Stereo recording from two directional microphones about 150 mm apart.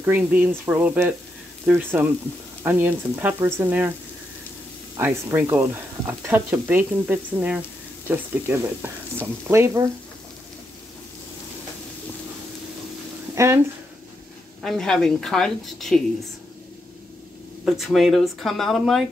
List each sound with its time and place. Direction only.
0.0 s speech: 10° right (ahead or behind)
4.9 s speech: 15° right (ahead or behind)
13.3 s a sound: 20° right (ahead or behind)
14.6 s a woman's voice: 5° left (ahead or behind)
17.6 s a woman's voice: centre (ahead or behind)